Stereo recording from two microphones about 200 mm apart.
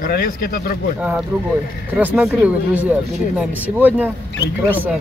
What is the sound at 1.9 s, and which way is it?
Speech, 5° right (ahead or behind).